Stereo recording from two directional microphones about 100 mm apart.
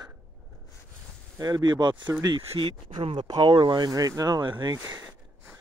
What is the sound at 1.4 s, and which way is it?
Speech, 45° right (ahead or behind).